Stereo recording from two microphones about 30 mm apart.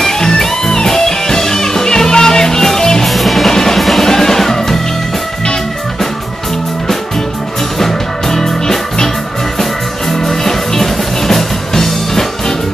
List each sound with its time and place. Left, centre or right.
0.0 s music: centre
3.1 s music: centre
3.4 s music: centre
7.8 s music: centre
10.1 s music: centre